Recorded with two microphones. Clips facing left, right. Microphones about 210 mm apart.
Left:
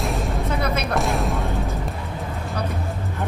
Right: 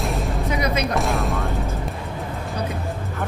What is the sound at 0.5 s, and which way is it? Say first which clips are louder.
Speech: right 2 dB; 15° right (ahead or behind).